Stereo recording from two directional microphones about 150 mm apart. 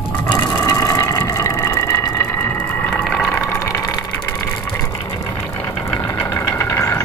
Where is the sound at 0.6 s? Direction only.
20° left (ahead or behind).